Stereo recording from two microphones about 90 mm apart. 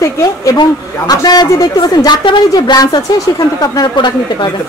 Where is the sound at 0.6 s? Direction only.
50° left (ahead or behind).